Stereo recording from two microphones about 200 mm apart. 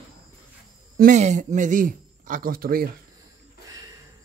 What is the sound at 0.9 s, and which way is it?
Speech, 40° right (ahead or behind).